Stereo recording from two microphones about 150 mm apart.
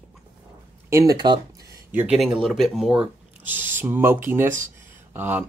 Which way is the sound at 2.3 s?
Centre (ahead or behind).